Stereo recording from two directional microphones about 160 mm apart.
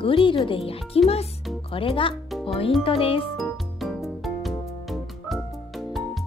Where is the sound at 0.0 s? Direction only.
35° left (ahead or behind).